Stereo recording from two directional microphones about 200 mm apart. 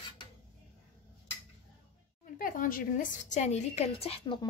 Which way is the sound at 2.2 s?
45° left (ahead or behind).